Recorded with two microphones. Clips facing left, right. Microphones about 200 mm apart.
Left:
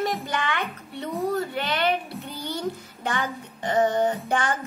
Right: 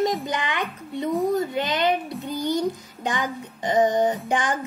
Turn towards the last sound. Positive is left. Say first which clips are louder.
# right 1 dB
turn(degrees=-15)  # may be behind; listen again after turning